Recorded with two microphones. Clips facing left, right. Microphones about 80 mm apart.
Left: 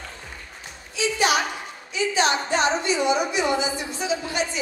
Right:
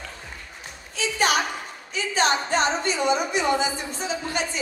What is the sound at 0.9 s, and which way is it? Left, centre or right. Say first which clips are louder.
A woman's voice: left 1 dB; right.